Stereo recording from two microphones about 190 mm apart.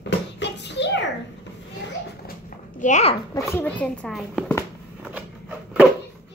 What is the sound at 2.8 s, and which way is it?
Speech, 35° left (ahead or behind).